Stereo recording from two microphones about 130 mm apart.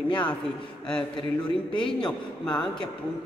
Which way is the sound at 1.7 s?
40° left (ahead or behind).